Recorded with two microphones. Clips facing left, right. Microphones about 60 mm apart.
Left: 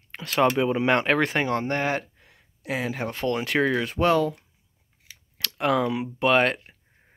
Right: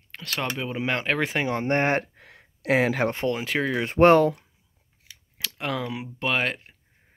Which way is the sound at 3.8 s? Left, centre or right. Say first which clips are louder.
Right 5 dB; right.